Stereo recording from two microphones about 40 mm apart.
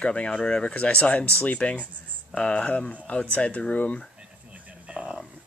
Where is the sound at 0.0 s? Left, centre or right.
Left.